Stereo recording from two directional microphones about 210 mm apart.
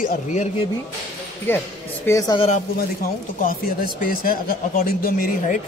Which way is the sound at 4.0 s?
45° left (ahead or behind).